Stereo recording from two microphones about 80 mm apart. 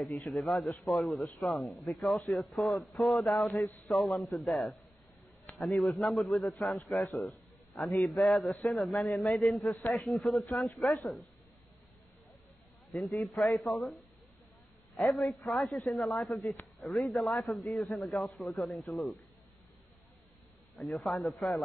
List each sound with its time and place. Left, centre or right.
0.3 s a man's voice: centre
12.9 s a man's voice: centre
15.0 s a man's voice: centre
20.8 s a man's voice: centre